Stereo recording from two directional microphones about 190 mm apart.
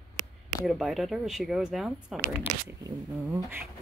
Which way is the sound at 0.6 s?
Centre (ahead or behind).